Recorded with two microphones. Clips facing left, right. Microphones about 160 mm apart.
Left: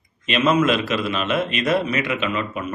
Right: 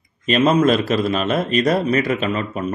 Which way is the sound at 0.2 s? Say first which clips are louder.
Right 3 dB; 35° right (ahead or behind).